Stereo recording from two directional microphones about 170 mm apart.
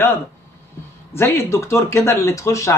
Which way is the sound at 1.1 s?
15° left (ahead or behind).